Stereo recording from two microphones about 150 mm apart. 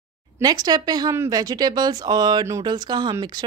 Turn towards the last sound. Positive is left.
turn(degrees=-30)  # may be behind; listen again after turning